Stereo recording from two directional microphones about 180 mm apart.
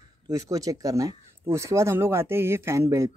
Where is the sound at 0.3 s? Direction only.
20° right (ahead or behind).